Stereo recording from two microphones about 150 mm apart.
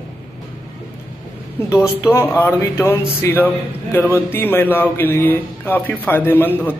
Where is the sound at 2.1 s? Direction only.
15° left (ahead or behind).